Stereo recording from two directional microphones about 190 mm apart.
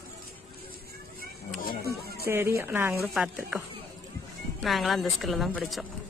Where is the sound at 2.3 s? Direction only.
15° right (ahead or behind).